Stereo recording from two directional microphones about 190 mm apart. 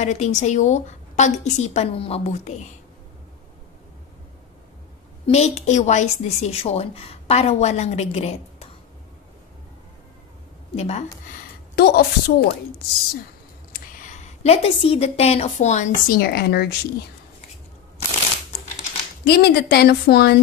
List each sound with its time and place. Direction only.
0.0 s a woman's voice: 35° left (ahead or behind)
5.2 s a woman's voice: 35° left (ahead or behind)
10.8 s a woman's voice: 35° left (ahead or behind)
11.7 s a woman's voice: 55° left (ahead or behind)
13.7 s a woman's voice: 40° left (ahead or behind)
16.2 s a woman's voice: 55° left (ahead or behind)
19.2 s a woman's voice: 55° left (ahead or behind)